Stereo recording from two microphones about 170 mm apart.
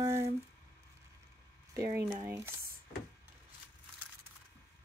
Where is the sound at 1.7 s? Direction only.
15° right (ahead or behind).